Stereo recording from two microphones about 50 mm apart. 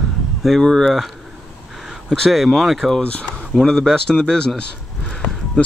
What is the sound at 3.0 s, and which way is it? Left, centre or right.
Speech, left.